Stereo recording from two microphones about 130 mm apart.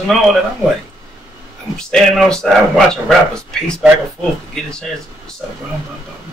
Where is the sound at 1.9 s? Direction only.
5° left (ahead or behind).